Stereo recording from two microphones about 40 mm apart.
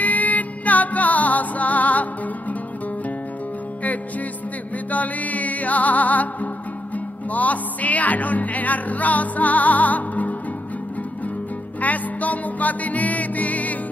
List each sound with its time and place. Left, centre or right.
0.0 s music: left
4.9 s music: left
11.8 s music: left